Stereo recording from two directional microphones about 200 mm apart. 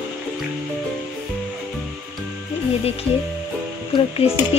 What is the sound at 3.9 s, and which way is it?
Speech, 30° left (ahead or behind).